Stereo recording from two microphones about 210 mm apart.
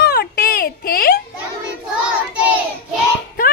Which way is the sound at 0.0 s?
50° left (ahead or behind).